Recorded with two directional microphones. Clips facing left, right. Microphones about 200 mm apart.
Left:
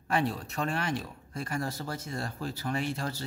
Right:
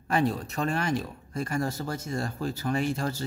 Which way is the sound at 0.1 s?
40° right (ahead or behind).